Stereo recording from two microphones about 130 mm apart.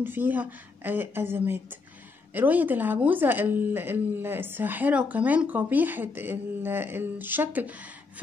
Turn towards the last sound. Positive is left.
turn(degrees=-15)  # may be behind; listen again after turning